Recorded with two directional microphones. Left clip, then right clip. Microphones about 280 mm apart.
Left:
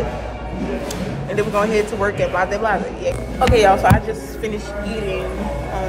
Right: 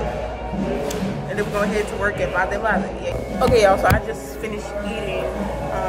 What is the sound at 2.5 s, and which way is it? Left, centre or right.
Speech, centre.